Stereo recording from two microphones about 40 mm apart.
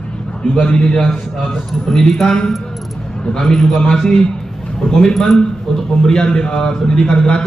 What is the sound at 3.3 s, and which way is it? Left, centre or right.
Speech, centre.